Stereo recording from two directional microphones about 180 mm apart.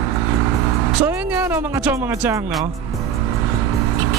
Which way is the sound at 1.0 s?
10° right (ahead or behind).